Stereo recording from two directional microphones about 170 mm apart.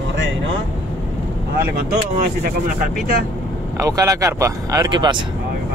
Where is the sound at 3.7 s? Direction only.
20° right (ahead or behind).